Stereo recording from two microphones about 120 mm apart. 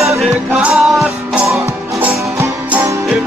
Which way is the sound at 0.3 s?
10° right (ahead or behind).